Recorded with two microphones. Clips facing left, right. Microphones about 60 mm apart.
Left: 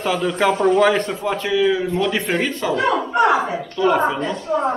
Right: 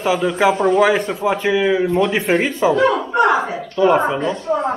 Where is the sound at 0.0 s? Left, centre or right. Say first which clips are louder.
Right 3 dB; centre.